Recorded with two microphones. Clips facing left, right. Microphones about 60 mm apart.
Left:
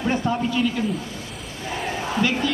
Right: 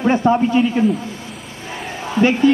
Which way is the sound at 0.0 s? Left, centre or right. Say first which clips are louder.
Right 8 dB; right.